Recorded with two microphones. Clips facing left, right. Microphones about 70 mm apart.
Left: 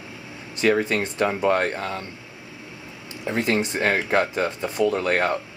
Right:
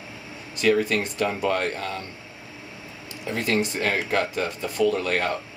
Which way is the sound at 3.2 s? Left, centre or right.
Left.